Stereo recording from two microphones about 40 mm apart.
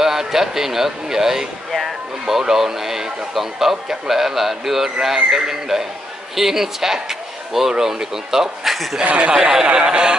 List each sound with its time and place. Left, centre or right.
0.0 s speech: centre
9.0 s speech: right
9.3 s speech: centre
9.8 s a sound: right